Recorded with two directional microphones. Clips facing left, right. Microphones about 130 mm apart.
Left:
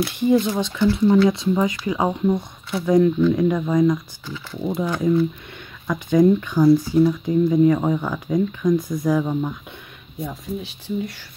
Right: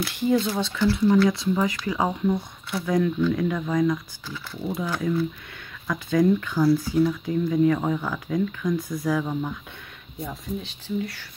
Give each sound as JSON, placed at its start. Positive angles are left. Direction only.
{"t": 0.0, "sound": "speech", "side_deg": 20}